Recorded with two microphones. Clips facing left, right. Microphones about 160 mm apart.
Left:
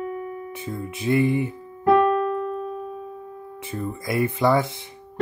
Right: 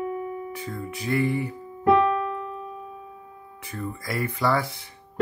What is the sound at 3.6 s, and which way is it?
Speech, 25° left (ahead or behind).